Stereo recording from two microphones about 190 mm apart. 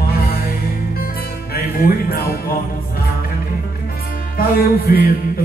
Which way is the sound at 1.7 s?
50° left (ahead or behind).